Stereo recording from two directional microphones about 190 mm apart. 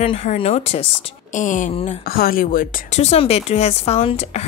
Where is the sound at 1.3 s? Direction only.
40° left (ahead or behind).